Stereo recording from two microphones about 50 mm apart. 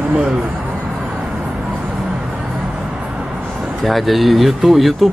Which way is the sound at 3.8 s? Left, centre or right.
Centre.